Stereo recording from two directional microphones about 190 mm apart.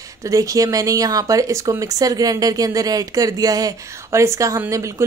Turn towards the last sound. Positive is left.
turn(degrees=-15)  # may be behind; listen again after turning